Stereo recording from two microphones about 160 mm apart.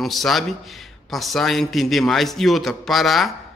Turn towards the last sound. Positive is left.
turn(degrees=0)  # may be behind; listen again after turning